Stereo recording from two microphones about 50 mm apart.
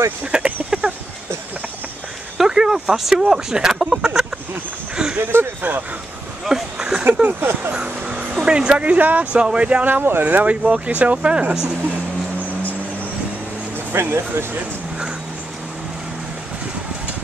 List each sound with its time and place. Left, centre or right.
0.2 s speech: right
0.7 s a sound: centre
2.3 s speech: centre
4.9 s a sound: centre
5.2 s speech: right
6.4 s a sound: centre
7.2 s speech: right
7.7 s vehicle: right
8.4 s speech: centre
9.8 s speech: right
10.4 s speech: right
13.9 s speech: right